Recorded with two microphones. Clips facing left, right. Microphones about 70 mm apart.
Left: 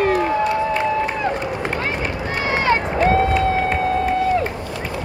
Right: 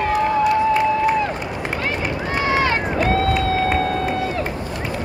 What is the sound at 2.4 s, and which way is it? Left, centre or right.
Run, left.